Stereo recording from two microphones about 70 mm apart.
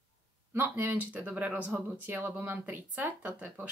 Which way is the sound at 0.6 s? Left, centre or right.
Right.